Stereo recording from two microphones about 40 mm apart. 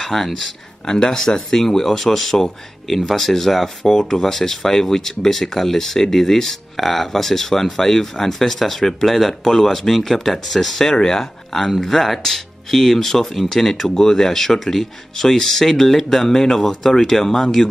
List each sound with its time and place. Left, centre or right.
0.0 s speech: centre